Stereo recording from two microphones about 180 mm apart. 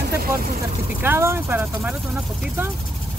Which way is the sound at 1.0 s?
15° right (ahead or behind).